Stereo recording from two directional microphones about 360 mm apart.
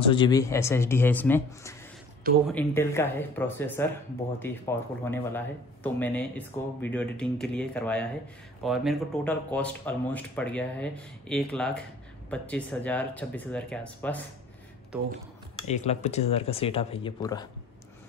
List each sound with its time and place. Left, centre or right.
0.0 s speech: centre
15.6 s speech: centre